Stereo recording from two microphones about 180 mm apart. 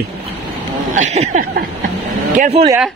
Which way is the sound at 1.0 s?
40° right (ahead or behind).